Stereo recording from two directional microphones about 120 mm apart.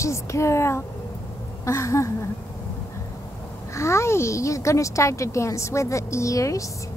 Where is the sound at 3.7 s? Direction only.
25° left (ahead or behind).